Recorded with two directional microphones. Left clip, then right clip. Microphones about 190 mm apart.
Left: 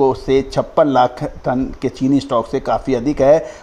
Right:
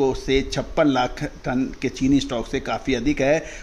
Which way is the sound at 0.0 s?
15° left (ahead or behind).